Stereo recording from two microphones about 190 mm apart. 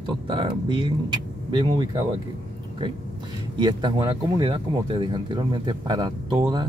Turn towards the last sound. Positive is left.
turn(degrees=-25)  # may be behind; listen again after turning